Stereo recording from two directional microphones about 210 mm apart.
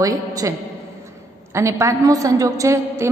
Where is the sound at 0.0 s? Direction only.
15° right (ahead or behind).